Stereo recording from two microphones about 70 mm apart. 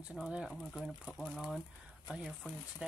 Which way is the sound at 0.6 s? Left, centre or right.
Centre.